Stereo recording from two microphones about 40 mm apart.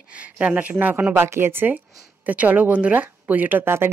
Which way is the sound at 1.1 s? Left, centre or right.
Right.